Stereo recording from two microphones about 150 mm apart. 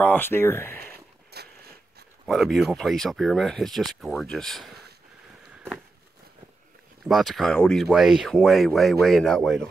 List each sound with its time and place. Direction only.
0.0 s speech: 15° left (ahead or behind)
0.7 s a sound: 90° right
2.2 s speech: centre (ahead or behind)
7.1 s speech: centre (ahead or behind)